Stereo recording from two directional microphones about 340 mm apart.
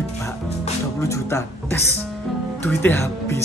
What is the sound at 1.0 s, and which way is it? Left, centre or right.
Speech, centre.